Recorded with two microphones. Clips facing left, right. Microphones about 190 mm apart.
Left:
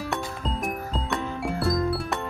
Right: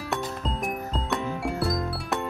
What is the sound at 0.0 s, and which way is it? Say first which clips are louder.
Music: even; centre (ahead or behind).